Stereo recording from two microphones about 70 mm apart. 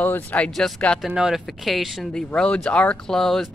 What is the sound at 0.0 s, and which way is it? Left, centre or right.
Speech, left.